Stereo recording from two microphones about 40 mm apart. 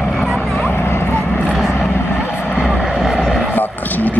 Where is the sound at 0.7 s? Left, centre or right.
Left.